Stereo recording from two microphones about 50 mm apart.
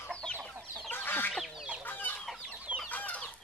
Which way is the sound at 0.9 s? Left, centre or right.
Left.